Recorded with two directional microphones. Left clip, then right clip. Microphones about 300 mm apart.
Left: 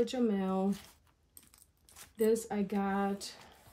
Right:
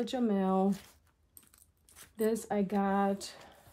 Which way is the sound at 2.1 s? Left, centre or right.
Centre.